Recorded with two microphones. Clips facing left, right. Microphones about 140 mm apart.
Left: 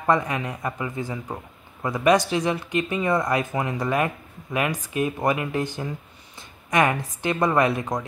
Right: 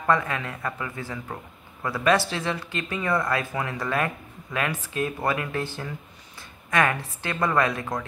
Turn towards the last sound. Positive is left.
turn(degrees=20)  # may be behind; listen again after turning